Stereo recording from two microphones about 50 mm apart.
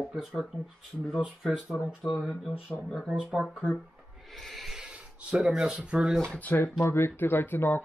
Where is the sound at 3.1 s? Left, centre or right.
Centre.